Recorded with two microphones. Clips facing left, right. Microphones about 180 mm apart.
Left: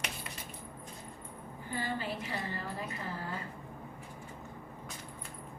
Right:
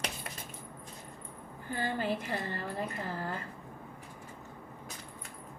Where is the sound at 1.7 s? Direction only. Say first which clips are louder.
Right 4 dB; 50° right (ahead or behind).